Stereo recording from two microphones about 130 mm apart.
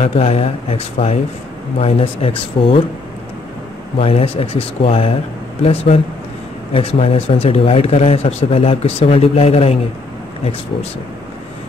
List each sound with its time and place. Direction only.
0.0 s speech: 50° left (ahead or behind)
4.0 s speech: 50° left (ahead or behind)